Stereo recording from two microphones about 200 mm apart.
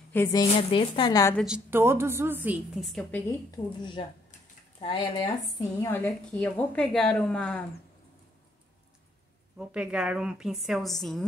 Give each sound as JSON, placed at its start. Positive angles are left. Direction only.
{"t": 0.1, "sound": "a woman's voice", "side_deg": 15}
{"t": 1.3, "sound": "a woman's voice", "side_deg": -5}
{"t": 3.3, "sound": "a woman's voice", "side_deg": 20}
{"t": 5.8, "sound": "a woman's voice", "side_deg": 10}
{"t": 9.6, "sound": "a woman's voice", "side_deg": -5}